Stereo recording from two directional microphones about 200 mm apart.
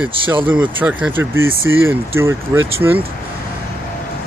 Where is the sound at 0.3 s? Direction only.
10° right (ahead or behind).